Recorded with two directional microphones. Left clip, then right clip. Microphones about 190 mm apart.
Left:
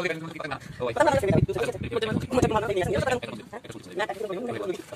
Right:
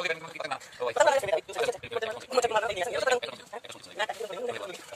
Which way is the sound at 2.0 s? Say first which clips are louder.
Left 4 dB; 15° left (ahead or behind).